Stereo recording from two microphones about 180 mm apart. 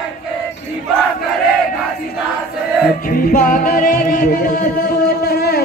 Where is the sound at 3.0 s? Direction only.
50° left (ahead or behind).